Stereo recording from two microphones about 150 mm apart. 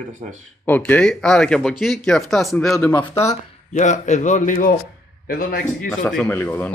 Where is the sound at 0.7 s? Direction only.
10° left (ahead or behind).